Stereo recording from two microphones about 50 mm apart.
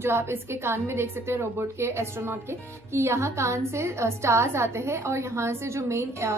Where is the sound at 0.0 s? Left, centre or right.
Right.